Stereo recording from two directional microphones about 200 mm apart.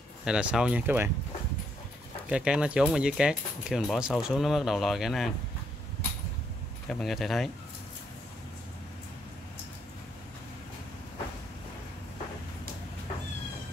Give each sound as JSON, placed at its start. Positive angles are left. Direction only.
{"t": 0.2, "sound": "speech", "side_deg": -5}
{"t": 2.2, "sound": "speech", "side_deg": -5}
{"t": 6.9, "sound": "speech", "side_deg": 0}